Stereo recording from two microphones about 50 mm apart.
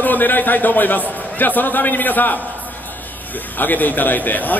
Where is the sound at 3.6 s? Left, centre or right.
Left.